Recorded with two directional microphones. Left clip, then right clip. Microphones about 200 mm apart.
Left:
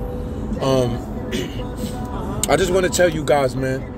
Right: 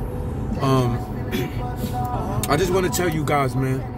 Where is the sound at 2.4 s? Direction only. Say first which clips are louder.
Left 4 dB; 15° right (ahead or behind).